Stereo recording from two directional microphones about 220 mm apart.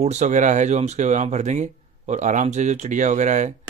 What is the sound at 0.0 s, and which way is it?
Speech, 30° right (ahead or behind).